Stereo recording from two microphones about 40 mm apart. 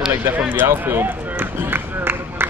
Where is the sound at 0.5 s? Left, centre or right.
Right.